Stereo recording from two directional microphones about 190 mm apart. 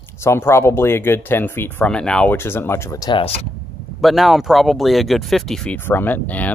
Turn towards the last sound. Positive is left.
turn(degrees=10)  # may be behind; listen again after turning